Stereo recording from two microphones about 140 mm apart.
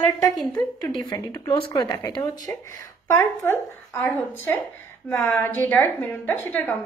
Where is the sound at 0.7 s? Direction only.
30° left (ahead or behind).